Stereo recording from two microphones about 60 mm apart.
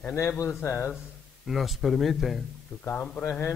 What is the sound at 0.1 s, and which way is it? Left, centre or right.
Speech, left.